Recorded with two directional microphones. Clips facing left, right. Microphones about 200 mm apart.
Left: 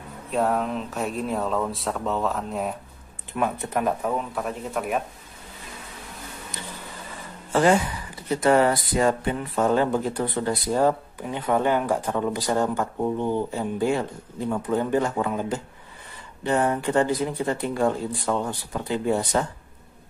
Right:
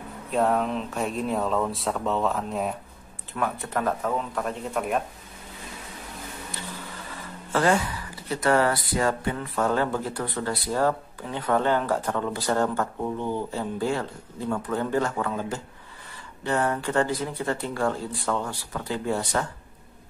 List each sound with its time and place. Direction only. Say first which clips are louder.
0.3 s speech: even; centre (ahead or behind)
3.6 s speech: left 1 dB; 20° left (ahead or behind)
4.0 s speech: left 1 dB; 5° left (ahead or behind)
7.5 s speech: left 3 dB; 20° left (ahead or behind)